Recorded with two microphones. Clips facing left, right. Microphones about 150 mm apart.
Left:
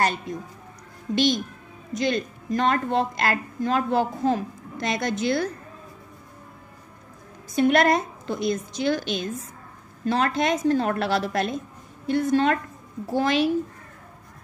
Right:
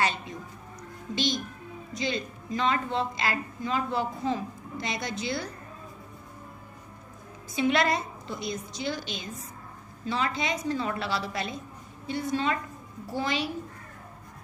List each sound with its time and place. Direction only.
0.0 s speech: 45° left (ahead or behind)
1.1 s a woman's voice: 60° left (ahead or behind)
7.5 s a woman's voice: 55° left (ahead or behind)